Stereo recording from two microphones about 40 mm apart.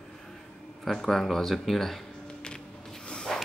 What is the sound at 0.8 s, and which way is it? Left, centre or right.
Speech, centre.